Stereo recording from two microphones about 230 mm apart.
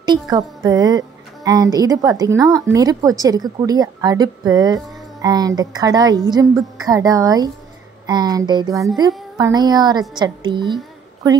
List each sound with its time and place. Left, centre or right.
0.0 s a woman's voice: centre